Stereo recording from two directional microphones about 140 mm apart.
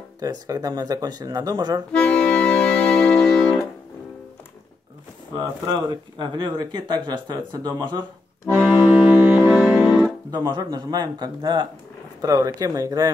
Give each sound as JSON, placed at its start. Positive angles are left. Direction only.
{"t": 0.2, "sound": "speech", "side_deg": -25}
{"t": 1.9, "sound": "music", "side_deg": 5}
{"t": 5.3, "sound": "speech", "side_deg": -30}
{"t": 8.5, "sound": "music", "side_deg": -10}
{"t": 10.3, "sound": "speech", "side_deg": -30}